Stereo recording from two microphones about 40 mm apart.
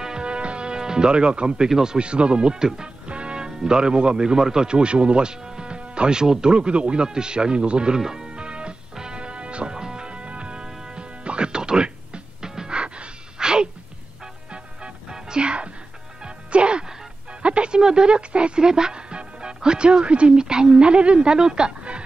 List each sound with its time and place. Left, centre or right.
0.0 s music: right
1.7 s speech: centre
2.0 s speech: right
8.0 s speech: centre
8.3 s music: right
12.7 s gasp: right
14.2 s music: right